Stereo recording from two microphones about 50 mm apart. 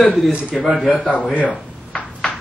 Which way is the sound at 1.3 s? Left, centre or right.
Left.